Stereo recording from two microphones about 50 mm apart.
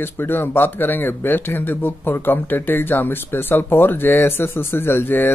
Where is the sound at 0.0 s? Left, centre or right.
Left.